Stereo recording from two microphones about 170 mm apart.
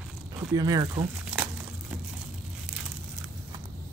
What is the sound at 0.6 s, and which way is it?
Speech, 20° right (ahead or behind).